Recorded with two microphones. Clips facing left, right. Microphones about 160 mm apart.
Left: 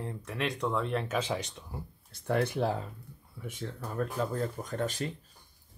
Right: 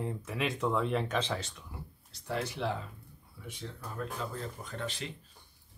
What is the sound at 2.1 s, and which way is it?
Speech, 55° left (ahead or behind).